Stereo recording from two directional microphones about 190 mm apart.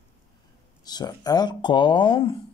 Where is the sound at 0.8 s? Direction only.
20° left (ahead or behind).